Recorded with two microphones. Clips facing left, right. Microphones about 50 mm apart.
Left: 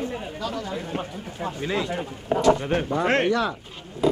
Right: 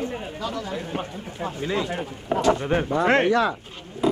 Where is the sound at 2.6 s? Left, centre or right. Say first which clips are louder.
Right 2 dB; centre.